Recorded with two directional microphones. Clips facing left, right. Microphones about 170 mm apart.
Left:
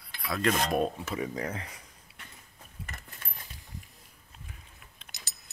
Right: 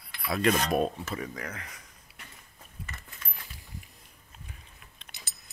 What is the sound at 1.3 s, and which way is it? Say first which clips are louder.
Speech: left 5 dB; 30° left (ahead or behind).